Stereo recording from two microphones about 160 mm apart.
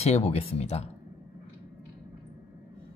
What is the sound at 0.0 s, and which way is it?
Speech, 40° left (ahead or behind).